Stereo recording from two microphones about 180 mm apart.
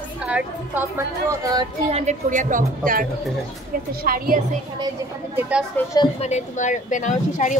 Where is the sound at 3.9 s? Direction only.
55° right (ahead or behind).